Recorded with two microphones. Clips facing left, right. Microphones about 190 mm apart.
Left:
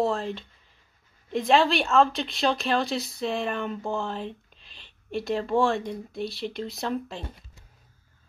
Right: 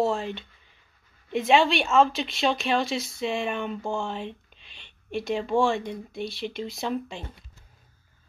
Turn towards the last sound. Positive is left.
turn(degrees=0)  # may be behind; listen again after turning